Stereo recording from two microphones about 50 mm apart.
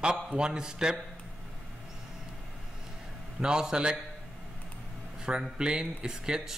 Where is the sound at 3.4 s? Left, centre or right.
Centre.